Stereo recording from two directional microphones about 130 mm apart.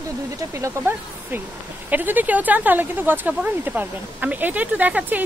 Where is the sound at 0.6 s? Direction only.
15° right (ahead or behind).